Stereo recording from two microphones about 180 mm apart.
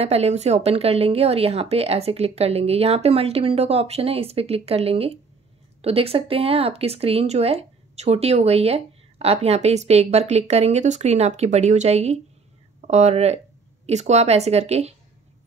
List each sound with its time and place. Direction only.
0.0 s speech: 35° right (ahead or behind)